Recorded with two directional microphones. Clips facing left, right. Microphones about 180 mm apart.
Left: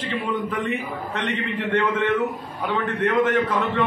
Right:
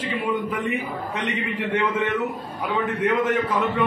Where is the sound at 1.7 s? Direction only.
10° right (ahead or behind).